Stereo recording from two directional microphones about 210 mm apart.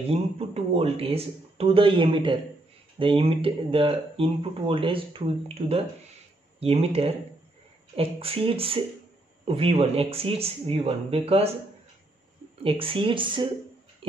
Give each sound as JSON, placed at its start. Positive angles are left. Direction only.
{"t": 0.1, "sound": "speech", "side_deg": -30}
{"t": 12.6, "sound": "speech", "side_deg": -25}